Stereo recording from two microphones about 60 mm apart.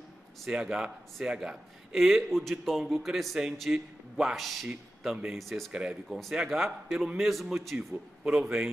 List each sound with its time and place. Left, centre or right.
0.5 s a man's voice: centre
5.7 s speech: centre
6.0 s a man's voice: centre
8.3 s speech: centre